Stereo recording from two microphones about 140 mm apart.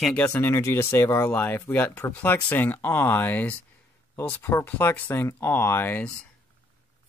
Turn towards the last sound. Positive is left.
turn(degrees=10)  # may be behind; listen again after turning